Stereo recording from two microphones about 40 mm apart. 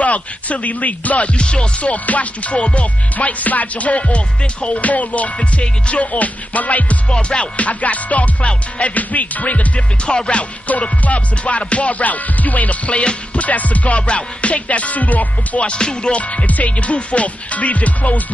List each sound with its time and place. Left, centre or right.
0.0 s music: left
1.4 s music: left
1.8 s music: left
7.1 s music: left
9.8 s music: left
10.7 s music: left
15.6 s music: left
16.2 s music: left